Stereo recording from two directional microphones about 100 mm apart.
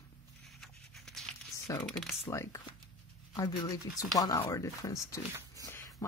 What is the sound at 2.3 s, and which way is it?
Speech, 30° left (ahead or behind).